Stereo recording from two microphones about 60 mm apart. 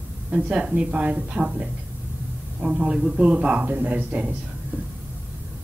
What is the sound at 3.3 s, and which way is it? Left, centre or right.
Speech, right.